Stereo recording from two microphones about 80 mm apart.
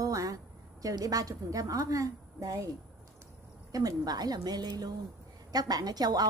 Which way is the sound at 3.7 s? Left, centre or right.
Right.